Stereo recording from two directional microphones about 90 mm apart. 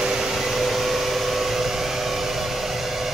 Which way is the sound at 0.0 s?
5° right (ahead or behind).